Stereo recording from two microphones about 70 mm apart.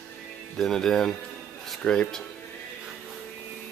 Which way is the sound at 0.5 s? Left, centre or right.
Centre.